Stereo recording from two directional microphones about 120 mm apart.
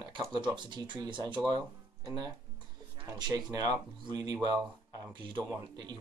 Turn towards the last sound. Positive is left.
turn(degrees=-35)  # may be behind; listen again after turning